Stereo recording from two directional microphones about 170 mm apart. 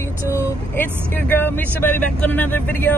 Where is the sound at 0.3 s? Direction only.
15° left (ahead or behind).